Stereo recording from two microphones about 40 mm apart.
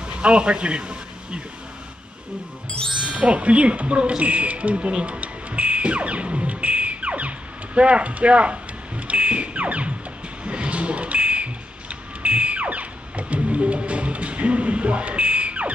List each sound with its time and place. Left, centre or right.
0.0 s speech: right
3.1 s speech: right
10.4 s a sound: right